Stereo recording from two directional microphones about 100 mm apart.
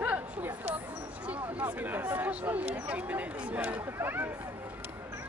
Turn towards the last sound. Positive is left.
turn(degrees=-20)  # may be behind; listen again after turning